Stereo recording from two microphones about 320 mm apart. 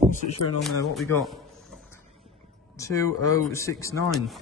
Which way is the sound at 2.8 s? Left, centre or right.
Centre.